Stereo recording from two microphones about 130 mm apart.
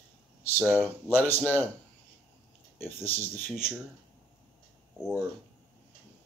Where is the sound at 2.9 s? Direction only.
15° left (ahead or behind).